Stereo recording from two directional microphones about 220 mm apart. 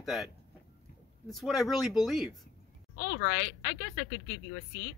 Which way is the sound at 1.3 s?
Centre (ahead or behind).